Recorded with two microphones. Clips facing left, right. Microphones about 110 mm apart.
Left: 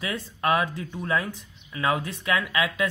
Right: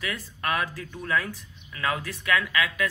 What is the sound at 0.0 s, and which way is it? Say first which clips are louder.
A man's voice: left 4 dB; 25° left (ahead or behind).